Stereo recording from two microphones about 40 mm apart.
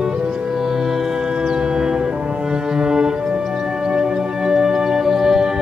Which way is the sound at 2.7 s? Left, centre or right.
Centre.